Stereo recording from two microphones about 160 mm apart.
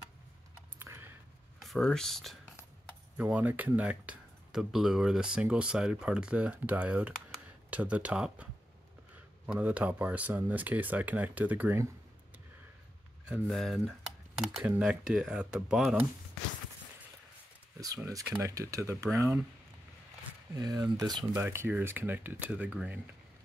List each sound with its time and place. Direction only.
0.7 s a sound: 15° right (ahead or behind)
1.6 s speech: 5° left (ahead or behind)
3.2 s speech: 10° right (ahead or behind)
9.5 s speech: 10° right (ahead or behind)
13.3 s speech: centre (ahead or behind)
17.7 s speech: 20° right (ahead or behind)
20.5 s speech: 25° right (ahead or behind); by 22.9 s 5° right (ahead or behind)